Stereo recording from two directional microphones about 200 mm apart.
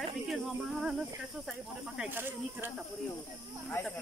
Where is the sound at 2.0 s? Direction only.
10° right (ahead or behind).